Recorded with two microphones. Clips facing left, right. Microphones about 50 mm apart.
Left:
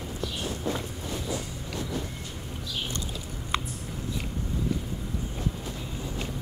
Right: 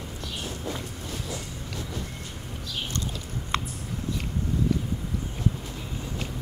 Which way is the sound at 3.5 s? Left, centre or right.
Right.